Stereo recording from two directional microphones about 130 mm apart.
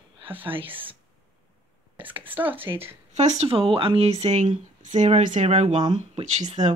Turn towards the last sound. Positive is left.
turn(degrees=-50)  # may be behind; listen again after turning